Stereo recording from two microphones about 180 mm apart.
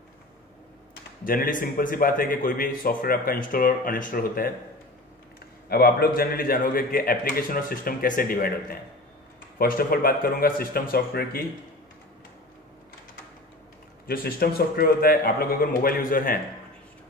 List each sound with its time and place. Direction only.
1.2 s a man's voice: 50° left (ahead or behind)
5.7 s a man's voice: 60° left (ahead or behind)
14.0 s speech: 55° left (ahead or behind)